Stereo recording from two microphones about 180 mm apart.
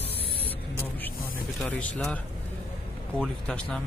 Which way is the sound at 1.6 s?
5° left (ahead or behind).